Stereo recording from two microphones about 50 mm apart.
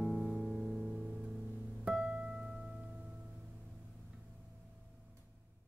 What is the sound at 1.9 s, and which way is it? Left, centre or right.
Music, right.